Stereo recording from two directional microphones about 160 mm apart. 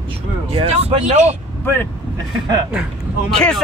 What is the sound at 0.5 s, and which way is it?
Speech, 40° right (ahead or behind).